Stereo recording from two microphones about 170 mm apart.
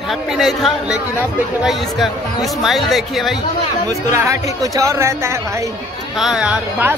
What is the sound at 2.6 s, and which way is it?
Speech, centre (ahead or behind).